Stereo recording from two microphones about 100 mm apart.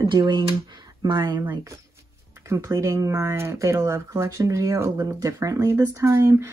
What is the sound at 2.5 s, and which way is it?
Speech, 30° right (ahead or behind).